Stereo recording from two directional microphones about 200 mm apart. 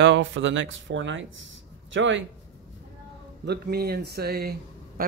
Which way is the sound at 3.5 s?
50° right (ahead or behind).